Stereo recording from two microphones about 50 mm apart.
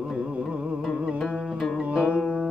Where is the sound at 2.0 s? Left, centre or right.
Centre.